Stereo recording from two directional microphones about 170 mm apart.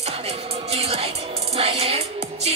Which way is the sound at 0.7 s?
35° right (ahead or behind).